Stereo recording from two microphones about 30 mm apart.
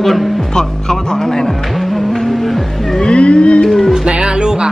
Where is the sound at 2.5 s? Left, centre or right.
Centre.